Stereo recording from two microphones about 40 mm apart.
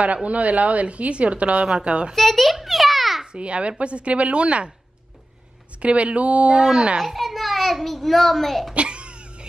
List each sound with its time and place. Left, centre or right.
0.0 s a woman's voice: right
2.1 s a child's voice: centre
2.5 s a sound: centre
3.3 s a woman's voice: right
5.8 s a woman's voice: right
7.0 s a child's voice: centre
8.7 s babbling: right